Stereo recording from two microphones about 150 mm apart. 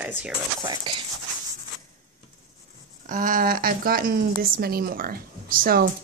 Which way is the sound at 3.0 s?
60° right (ahead or behind).